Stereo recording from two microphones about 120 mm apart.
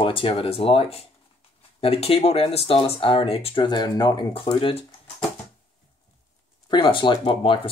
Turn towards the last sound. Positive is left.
turn(degrees=45)  # may be behind; listen again after turning